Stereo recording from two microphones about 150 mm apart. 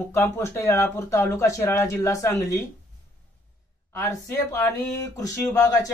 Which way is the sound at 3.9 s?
20° left (ahead or behind).